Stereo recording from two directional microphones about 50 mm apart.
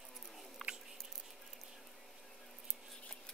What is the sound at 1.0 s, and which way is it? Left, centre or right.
Squish, centre.